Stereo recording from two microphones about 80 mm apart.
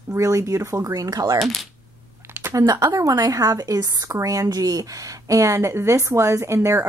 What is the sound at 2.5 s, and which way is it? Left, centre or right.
A woman's voice, right.